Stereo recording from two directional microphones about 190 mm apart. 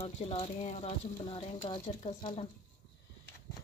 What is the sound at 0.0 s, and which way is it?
Speech, 30° left (ahead or behind).